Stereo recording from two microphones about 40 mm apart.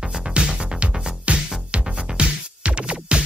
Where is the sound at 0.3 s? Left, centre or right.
Right.